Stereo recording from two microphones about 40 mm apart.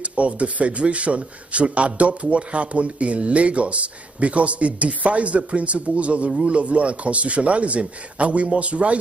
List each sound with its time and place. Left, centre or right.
0.0 s speech: right